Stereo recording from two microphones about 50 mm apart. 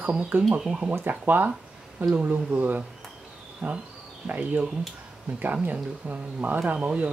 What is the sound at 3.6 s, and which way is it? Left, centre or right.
Speech, right.